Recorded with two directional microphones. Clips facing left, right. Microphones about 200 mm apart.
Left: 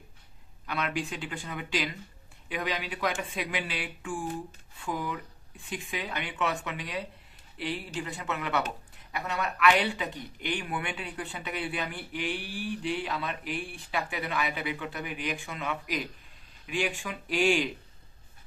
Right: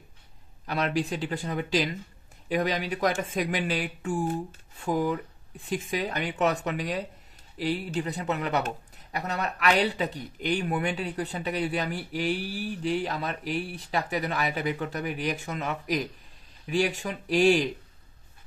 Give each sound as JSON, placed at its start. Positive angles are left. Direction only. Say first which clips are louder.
{"t": 0.7, "sound": "speech", "louder": "right 5 dB", "side_deg": -40}